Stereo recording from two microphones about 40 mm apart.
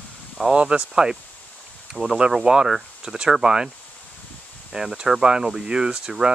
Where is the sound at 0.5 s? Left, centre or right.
Right.